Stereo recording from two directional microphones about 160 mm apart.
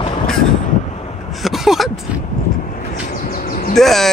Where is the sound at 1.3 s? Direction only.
Centre (ahead or behind).